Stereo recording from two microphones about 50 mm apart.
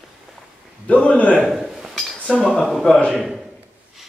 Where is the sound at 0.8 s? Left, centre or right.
Left.